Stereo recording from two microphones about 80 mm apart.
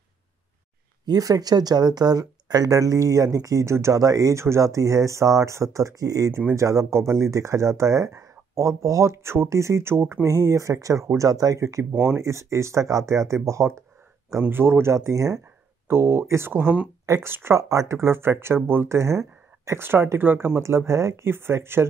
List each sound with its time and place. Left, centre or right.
1.0 s speech: right